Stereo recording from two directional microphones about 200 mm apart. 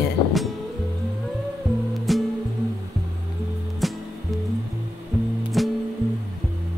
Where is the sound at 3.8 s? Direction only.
Centre (ahead or behind).